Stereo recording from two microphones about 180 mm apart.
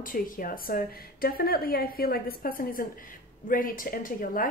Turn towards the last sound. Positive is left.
turn(degrees=50)  # may be behind; listen again after turning